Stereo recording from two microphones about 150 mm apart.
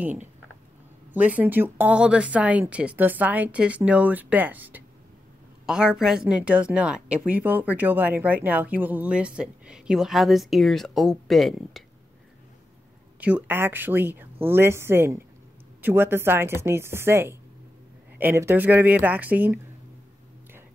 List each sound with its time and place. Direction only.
1.1 s a woman's voice: 10° right (ahead or behind)
13.2 s a woman's voice: 10° right (ahead or behind)